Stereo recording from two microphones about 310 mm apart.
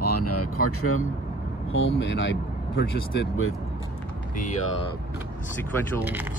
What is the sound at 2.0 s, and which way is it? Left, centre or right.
Speech, left.